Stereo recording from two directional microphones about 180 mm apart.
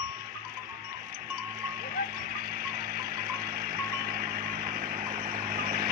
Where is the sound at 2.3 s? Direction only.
55° right (ahead or behind).